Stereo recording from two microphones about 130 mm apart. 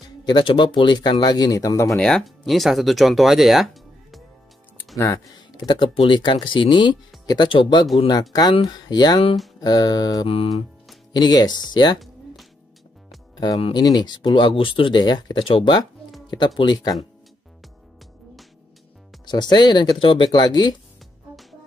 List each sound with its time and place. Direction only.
0.2 s speech: 35° left (ahead or behind)
1.9 s speech: 5° left (ahead or behind)
4.9 s speech: 25° left (ahead or behind)
10.2 s music: 45° left (ahead or behind)
11.1 s speech: 35° left (ahead or behind)
13.7 s speech: 35° left (ahead or behind)
19.2 s speech: 35° left (ahead or behind)